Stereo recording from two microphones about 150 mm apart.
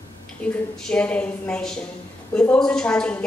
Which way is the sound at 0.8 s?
10° left (ahead or behind).